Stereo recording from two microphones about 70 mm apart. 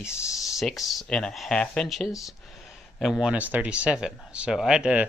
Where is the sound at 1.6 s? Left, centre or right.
Centre.